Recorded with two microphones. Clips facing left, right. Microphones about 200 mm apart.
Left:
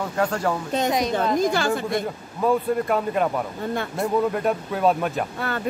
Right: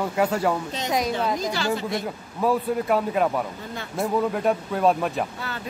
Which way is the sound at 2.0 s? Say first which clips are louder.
Left 1 dB; centre (ahead or behind).